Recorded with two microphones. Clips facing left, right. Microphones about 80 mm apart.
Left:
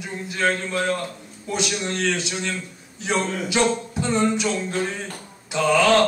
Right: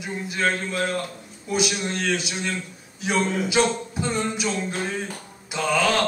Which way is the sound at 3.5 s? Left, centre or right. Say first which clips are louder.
Left 1 dB; centre.